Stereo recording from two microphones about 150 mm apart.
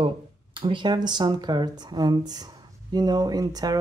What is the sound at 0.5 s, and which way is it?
Speech, 35° right (ahead or behind).